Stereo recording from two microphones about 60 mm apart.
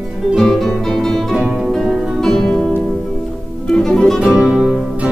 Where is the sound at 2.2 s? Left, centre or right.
Centre.